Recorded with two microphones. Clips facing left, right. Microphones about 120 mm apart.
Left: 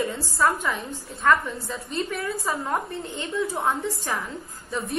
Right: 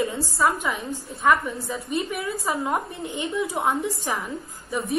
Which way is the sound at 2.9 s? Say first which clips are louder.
Right 2 dB; 15° right (ahead or behind).